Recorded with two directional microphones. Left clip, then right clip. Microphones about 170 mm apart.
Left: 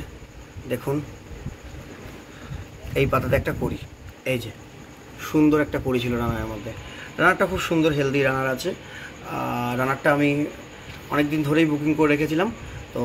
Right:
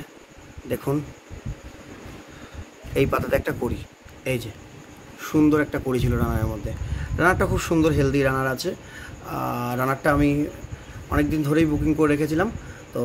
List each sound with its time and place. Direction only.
2.9 s speech: 50° right (ahead or behind)
5.2 s a man's voice: 35° right (ahead or behind)
7.2 s a man's voice: 50° right (ahead or behind); by 12.4 s 30° right (ahead or behind)